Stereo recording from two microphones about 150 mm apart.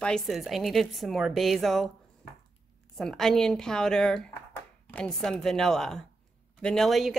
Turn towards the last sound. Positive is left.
turn(degrees=0)  # may be behind; listen again after turning